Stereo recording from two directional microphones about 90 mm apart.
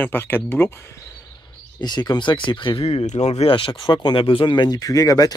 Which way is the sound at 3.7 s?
60° left (ahead or behind).